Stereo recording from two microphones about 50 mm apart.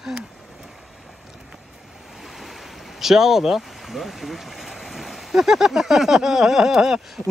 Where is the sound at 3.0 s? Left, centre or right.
Centre.